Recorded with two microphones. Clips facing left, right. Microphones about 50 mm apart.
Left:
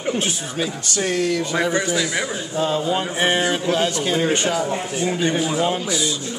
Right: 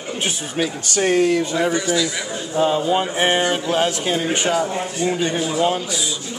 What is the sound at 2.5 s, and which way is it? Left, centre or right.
Speech, centre.